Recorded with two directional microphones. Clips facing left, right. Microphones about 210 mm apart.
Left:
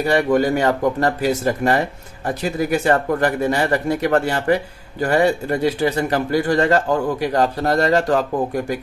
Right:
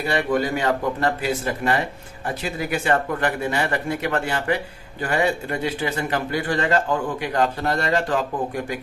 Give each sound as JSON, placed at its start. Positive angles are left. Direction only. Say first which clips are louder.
{"t": 0.0, "sound": "a man's voice", "louder": "left 5 dB", "side_deg": 40}